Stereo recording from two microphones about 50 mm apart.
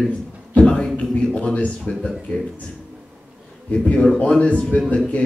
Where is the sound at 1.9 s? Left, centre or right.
Centre.